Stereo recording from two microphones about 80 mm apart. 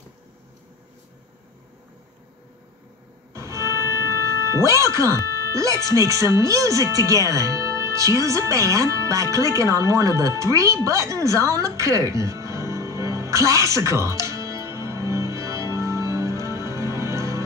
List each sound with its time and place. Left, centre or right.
3.3 s music: right
4.5 s speech: right